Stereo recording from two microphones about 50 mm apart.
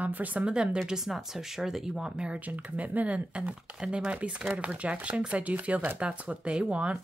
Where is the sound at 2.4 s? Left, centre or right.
Right.